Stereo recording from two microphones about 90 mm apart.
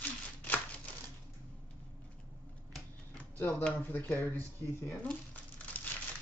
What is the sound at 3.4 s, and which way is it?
Speech, 15° left (ahead or behind).